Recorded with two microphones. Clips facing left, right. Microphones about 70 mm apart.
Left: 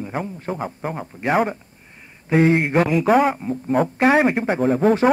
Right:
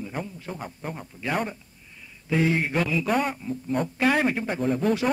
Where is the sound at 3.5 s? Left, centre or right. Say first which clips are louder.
Left 7 dB; left.